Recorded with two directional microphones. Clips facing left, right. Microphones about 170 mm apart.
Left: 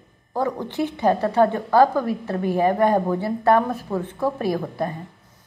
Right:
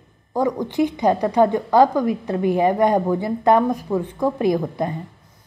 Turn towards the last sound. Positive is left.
turn(degrees=-15)  # may be behind; listen again after turning